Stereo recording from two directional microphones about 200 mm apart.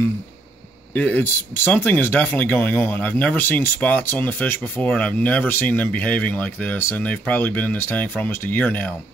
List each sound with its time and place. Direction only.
0.9 s speech: 10° left (ahead or behind)